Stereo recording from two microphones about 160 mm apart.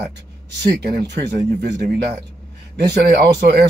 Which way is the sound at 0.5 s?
90° right.